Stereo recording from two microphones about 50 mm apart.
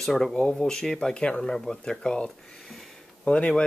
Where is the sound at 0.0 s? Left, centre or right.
Centre.